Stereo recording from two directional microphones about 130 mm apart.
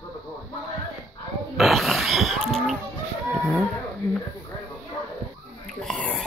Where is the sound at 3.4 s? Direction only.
5° left (ahead or behind).